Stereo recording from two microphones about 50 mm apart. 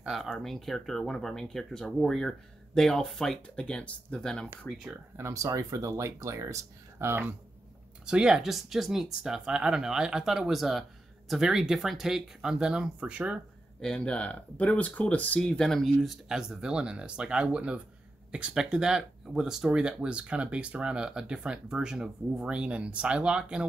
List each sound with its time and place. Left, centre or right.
0.0 s speech: centre
0.4 s speech: centre
3.4 s speech: centre
5.1 s speech: right
7.0 s speech: right
8.0 s speech: centre
13.7 s speech: centre
14.0 s speech: left
15.4 s speech: centre
15.7 s speech: centre